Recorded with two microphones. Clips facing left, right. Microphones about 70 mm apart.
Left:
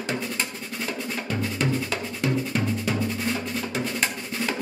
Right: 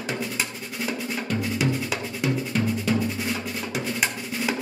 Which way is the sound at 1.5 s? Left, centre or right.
Centre.